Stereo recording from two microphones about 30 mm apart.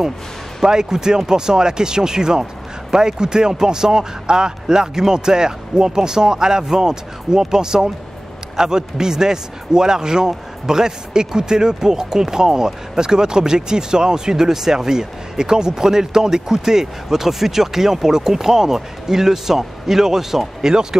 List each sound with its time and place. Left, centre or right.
0.6 s a man's voice: right
20.9 s a man's voice: right